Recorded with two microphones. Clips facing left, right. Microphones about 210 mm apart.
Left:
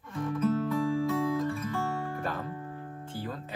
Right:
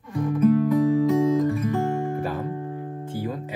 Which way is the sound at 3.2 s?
15° right (ahead or behind).